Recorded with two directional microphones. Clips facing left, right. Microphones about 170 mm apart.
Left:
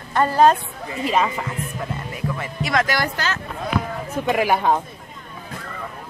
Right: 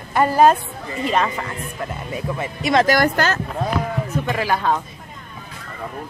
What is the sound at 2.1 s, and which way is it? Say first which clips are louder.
Speech: right 4 dB; 20° right (ahead or behind).